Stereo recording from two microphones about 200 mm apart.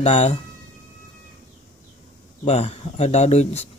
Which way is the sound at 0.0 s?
35° left (ahead or behind).